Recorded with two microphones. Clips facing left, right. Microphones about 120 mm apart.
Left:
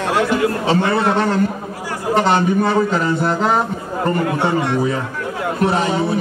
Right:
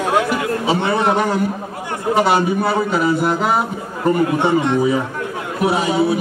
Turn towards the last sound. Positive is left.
turn(degrees=-10)  # may be behind; listen again after turning